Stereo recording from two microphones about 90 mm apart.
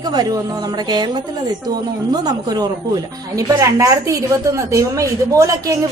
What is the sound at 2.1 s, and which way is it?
A woman's voice, 45° right (ahead or behind).